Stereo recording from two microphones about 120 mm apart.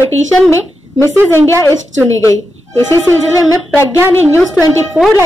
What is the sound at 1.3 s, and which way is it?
Speech, 20° left (ahead or behind).